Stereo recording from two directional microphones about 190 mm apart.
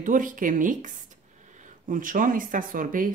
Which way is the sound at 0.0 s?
45° right (ahead or behind).